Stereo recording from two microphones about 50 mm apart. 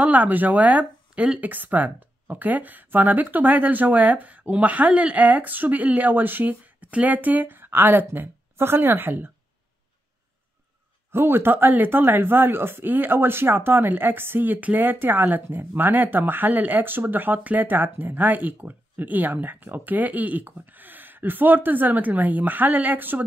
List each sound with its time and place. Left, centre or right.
0.0 s speech: right
11.1 s speech: right